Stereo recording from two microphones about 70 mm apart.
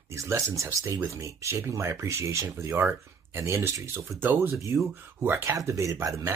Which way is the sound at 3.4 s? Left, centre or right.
Right.